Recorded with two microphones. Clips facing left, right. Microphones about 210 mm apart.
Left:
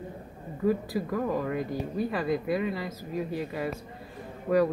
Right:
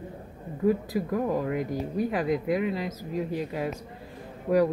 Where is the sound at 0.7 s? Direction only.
15° right (ahead or behind).